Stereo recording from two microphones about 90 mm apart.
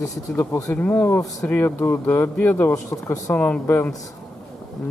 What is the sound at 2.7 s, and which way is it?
Speech, 35° left (ahead or behind).